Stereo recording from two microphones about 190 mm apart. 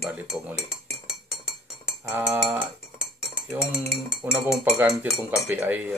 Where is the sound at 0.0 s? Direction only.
5° right (ahead or behind).